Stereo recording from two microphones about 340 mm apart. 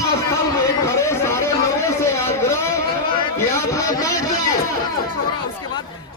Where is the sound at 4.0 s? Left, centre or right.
Centre.